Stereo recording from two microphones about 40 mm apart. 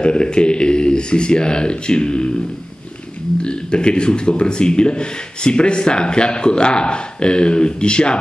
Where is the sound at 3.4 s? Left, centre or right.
Left.